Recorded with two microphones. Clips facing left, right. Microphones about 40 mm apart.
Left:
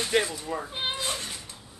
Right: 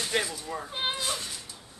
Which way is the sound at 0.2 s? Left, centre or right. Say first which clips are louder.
Left 2 dB; left.